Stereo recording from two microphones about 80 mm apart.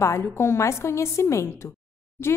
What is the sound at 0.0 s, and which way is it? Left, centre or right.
A woman's voice, left.